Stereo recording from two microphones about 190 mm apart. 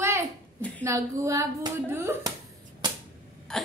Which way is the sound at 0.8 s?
15° right (ahead or behind).